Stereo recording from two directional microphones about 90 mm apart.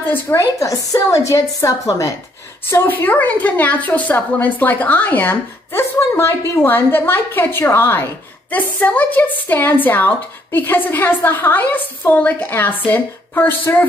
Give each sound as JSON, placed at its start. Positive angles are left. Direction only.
{"t": 0.0, "sound": "speech", "side_deg": 20}
{"t": 0.4, "sound": "a woman's voice", "side_deg": 35}
{"t": 2.7, "sound": "a woman's voice", "side_deg": 25}